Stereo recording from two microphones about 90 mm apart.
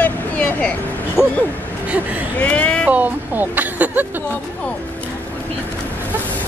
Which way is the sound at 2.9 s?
20° right (ahead or behind).